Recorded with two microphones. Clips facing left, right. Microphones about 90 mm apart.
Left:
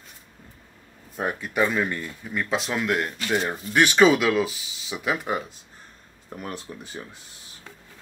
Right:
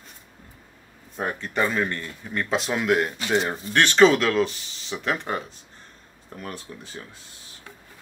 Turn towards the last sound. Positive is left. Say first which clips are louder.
# left 2 dB
turn(degrees=20)  # may be behind; listen again after turning